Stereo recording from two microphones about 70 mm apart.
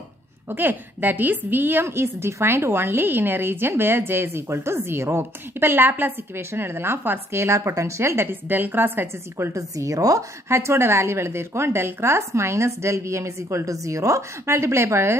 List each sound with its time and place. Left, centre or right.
0.5 s a woman's voice: right
9.6 s speech: right
10.5 s a woman's voice: right